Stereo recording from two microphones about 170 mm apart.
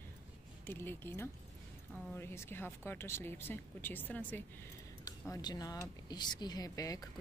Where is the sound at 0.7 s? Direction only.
15° left (ahead or behind).